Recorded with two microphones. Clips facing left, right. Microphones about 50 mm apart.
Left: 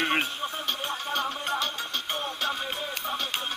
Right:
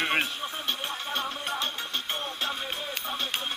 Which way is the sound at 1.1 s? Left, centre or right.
Left.